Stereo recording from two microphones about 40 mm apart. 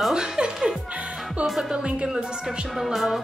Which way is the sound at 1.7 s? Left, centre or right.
Right.